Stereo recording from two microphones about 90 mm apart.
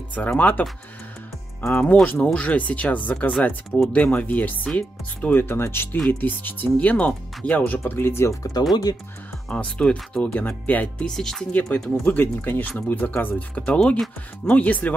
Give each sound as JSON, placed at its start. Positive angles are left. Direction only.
{"t": 0.1, "sound": "speech", "side_deg": 15}
{"t": 1.7, "sound": "speech", "side_deg": 15}
{"t": 9.5, "sound": "speech", "side_deg": 10}
{"t": 11.1, "sound": "speech", "side_deg": 5}
{"t": 11.5, "sound": "speech", "side_deg": 20}